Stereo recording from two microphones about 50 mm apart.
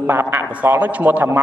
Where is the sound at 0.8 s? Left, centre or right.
Right.